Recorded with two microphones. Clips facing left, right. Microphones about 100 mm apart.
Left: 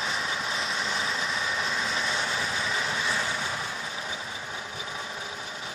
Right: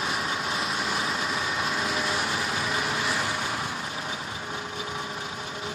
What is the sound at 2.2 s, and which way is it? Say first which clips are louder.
Vehicle: right 2 dB; 15° right (ahead or behind).